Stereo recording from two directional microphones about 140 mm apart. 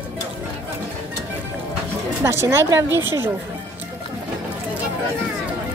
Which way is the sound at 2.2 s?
20° right (ahead or behind).